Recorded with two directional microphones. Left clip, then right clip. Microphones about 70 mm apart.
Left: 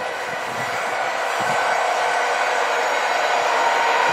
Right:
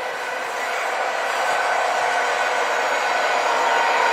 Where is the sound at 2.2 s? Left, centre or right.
Right.